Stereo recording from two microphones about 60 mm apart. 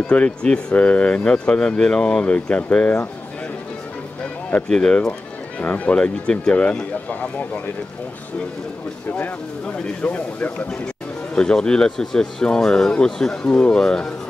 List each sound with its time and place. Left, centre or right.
0.0 s speech: centre
4.6 s speech: centre
5.6 s speech: left
5.9 s speech: centre
9.2 s speech: left
11.3 s speech: centre